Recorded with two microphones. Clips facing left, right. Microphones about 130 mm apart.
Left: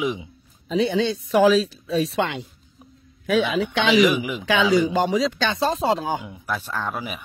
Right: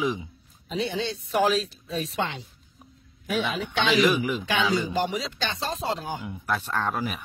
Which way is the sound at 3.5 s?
90° left.